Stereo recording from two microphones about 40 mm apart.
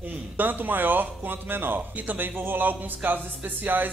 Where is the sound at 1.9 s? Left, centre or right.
Right.